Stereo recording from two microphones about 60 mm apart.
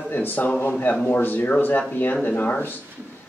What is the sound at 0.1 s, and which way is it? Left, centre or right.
Speech, left.